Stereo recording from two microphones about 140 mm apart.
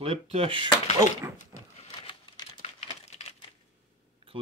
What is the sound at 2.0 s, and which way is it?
Typing, 30° left (ahead or behind).